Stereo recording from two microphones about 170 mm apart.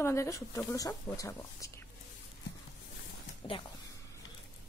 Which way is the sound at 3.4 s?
30° left (ahead or behind).